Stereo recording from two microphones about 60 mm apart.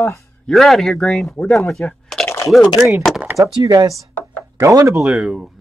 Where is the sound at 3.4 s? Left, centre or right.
Right.